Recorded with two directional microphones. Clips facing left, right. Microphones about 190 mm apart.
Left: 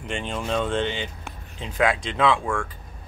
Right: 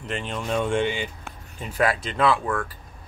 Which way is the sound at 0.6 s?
10° right (ahead or behind).